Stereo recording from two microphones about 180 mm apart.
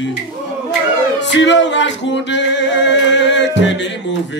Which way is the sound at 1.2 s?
80° left.